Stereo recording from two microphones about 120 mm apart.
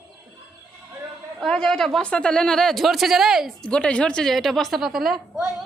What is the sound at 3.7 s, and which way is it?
A woman's voice, 10° left (ahead or behind).